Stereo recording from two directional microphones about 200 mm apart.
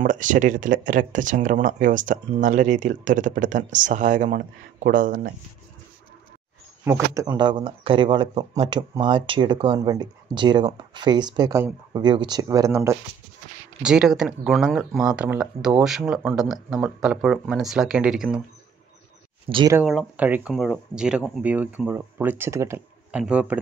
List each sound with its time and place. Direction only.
0.0 s speech: 40° right (ahead or behind)
6.8 s speech: 10° right (ahead or behind)
13.8 s speech: 5° right (ahead or behind)
19.5 s speech: 20° right (ahead or behind)
19.8 s speech: 5° right (ahead or behind)